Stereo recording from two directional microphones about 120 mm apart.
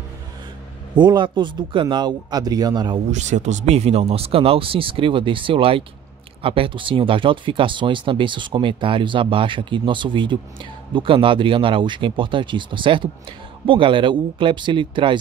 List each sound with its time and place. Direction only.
0.9 s a man's voice: 40° right (ahead or behind)
3.1 s speech: 80° right; by 15.1 s 45° right (ahead or behind)